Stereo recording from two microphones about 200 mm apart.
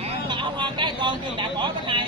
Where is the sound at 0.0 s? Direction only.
25° right (ahead or behind).